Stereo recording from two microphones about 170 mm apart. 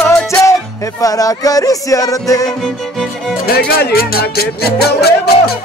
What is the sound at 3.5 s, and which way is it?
Music, 65° left (ahead or behind).